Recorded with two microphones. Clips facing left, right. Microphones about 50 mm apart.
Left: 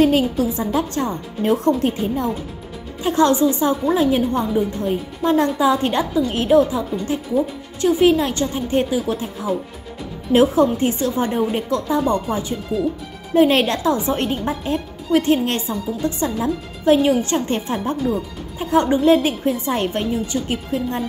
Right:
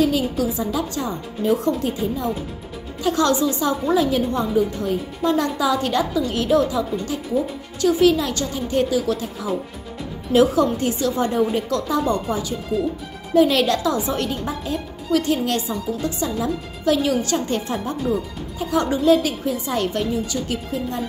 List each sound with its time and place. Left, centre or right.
0.0 s a woman's voice: left
3.0 s a woman's voice: left